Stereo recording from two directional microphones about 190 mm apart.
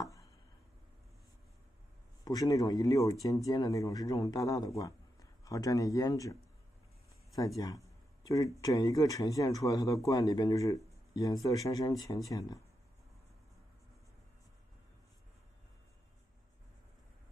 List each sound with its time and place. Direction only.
0.0 s a sound: 15° left (ahead or behind)
2.2 s speech: 20° left (ahead or behind)
7.3 s speech: 15° left (ahead or behind)